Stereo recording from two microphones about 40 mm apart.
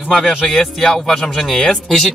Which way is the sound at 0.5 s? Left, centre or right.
Centre.